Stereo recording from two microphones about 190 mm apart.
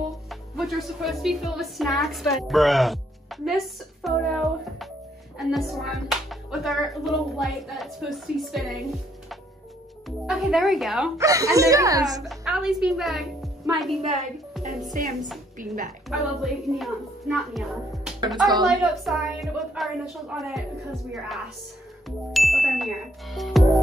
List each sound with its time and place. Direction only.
0.3 s speech: centre (ahead or behind)
10.0 s speech: centre (ahead or behind)
11.1 s speech: 15° right (ahead or behind)
12.2 s speech: centre (ahead or behind)
14.9 s a woman's voice: 45° right (ahead or behind)
16.1 s speech: centre (ahead or behind)
18.2 s speech: 20° right (ahead or behind)
18.6 s speech: centre (ahead or behind)
22.3 s speech: centre (ahead or behind)